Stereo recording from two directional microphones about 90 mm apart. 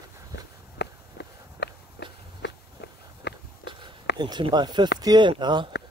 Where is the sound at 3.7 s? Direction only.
55° right (ahead or behind).